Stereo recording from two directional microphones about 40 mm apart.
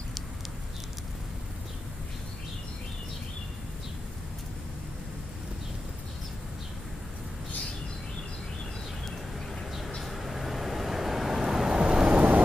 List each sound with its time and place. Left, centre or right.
9.7 s vehicle: centre
11.8 s vehicle: right
12.2 s vehicle: right